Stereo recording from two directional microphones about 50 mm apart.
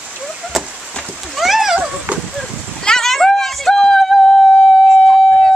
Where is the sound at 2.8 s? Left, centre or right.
Centre.